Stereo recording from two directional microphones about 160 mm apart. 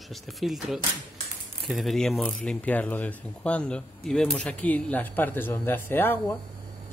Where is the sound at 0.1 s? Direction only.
Centre (ahead or behind).